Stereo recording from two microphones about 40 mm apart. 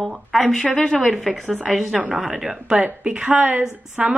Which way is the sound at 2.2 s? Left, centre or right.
Centre.